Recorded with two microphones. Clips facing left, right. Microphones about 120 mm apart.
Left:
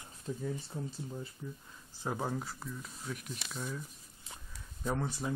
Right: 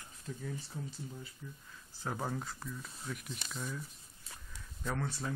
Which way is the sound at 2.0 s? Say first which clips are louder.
Left 2 dB; 10° left (ahead or behind).